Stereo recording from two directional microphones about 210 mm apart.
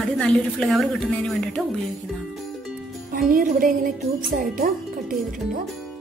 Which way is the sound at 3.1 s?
40° right (ahead or behind).